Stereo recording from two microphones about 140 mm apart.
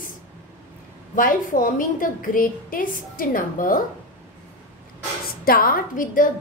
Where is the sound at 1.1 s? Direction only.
75° left (ahead or behind).